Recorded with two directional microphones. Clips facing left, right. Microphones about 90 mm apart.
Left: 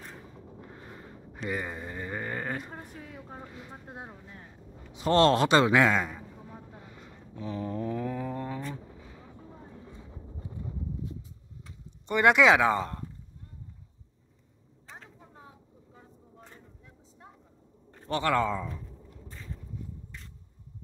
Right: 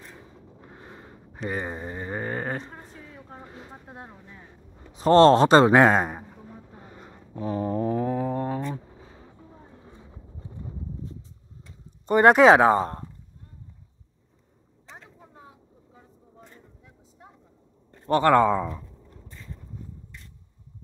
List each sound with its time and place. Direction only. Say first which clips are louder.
0.6 s a sound: right 2 dB; 20° right (ahead or behind)
3.2 s a sound: right 1 dB; 5° left (ahead or behind)
3.7 s speech: even; centre (ahead or behind)
4.9 s a man's voice: right 7 dB; 35° right (ahead or behind)
6.8 s a sound: right 3 dB; 40° right (ahead or behind)
8.9 s vehicle: right 1 dB; 30° right (ahead or behind)
9.4 s vehicle: left 2 dB; centre (ahead or behind)
10.3 s clip-clop: even; 10° left (ahead or behind)
12.1 s a man's voice: right 6 dB; 40° right (ahead or behind)
15.9 s vehicle: even; 10° right (ahead or behind)
18.0 s a man's voice: right 8 dB; 45° right (ahead or behind)